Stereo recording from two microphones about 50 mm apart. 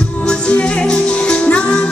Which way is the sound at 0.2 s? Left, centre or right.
Left.